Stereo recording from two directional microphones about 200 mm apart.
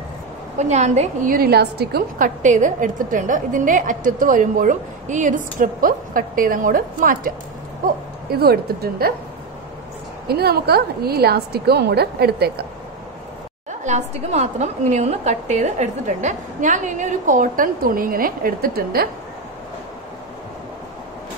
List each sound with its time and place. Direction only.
0.6 s a woman's voice: 35° right (ahead or behind)
10.2 s a woman's voice: 50° right (ahead or behind)
13.7 s a woman's voice: 35° right (ahead or behind)